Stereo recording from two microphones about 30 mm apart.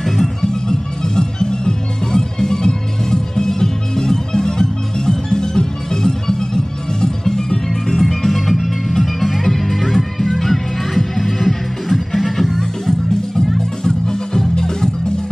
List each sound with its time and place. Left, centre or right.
0.0 s music: centre
0.4 s music: left
8.0 s music: centre
13.6 s music: centre